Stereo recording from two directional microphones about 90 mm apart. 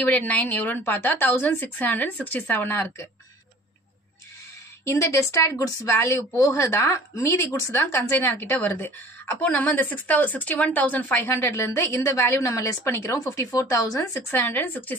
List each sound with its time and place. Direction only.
0.0 s a woman's voice: 20° left (ahead or behind)
4.8 s a woman's voice: 30° left (ahead or behind)
14.3 s a woman's voice: 20° left (ahead or behind)